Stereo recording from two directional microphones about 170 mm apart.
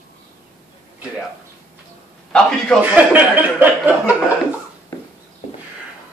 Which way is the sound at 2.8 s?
10° right (ahead or behind).